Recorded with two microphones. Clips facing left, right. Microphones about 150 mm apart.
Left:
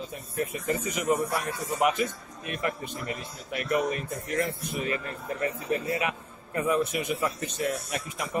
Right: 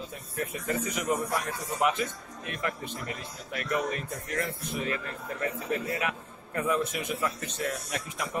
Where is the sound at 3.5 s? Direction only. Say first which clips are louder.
Left 3 dB; 10° left (ahead or behind).